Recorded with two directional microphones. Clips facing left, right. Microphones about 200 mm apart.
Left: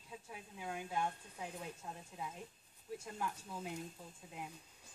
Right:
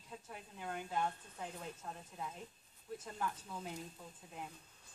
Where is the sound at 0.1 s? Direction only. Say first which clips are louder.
Even; 5° left (ahead or behind).